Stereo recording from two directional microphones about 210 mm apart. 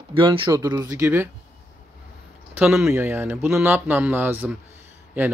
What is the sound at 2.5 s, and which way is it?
A man's voice, 5° right (ahead or behind).